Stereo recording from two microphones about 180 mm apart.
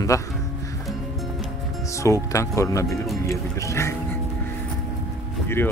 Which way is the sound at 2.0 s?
15° left (ahead or behind).